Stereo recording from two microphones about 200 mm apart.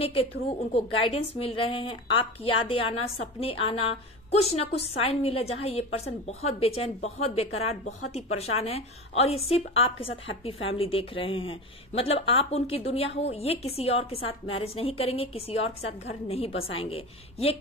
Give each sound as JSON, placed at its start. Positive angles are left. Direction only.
{"t": 0.0, "sound": "a woman's voice", "side_deg": 30}